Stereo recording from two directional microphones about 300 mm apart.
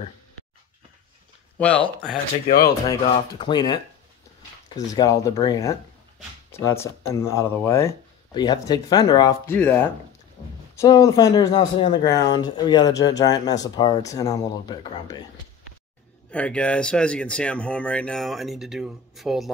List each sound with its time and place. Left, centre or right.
1.6 s speech: centre
2.4 s speech: left
2.9 s speech: centre
16.3 s speech: centre